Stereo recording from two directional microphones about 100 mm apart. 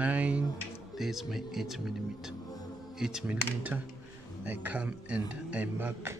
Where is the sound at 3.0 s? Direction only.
5° right (ahead or behind).